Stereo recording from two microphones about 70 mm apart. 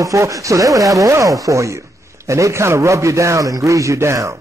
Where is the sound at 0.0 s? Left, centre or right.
Right.